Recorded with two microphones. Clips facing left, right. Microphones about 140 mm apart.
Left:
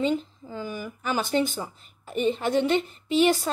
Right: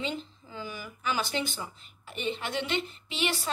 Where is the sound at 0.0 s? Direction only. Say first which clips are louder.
Left 9 dB; 45° left (ahead or behind).